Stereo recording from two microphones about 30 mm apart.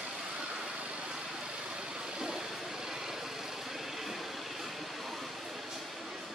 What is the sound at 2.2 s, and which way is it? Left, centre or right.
Vehicle, right.